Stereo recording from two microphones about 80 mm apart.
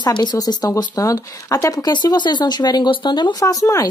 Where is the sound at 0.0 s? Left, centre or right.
Left.